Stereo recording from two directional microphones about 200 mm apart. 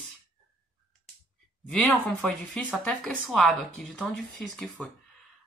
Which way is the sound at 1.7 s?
5° left (ahead or behind).